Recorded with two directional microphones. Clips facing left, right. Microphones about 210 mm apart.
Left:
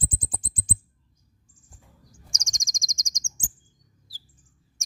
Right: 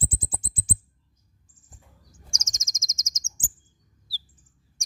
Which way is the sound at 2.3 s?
5° right (ahead or behind).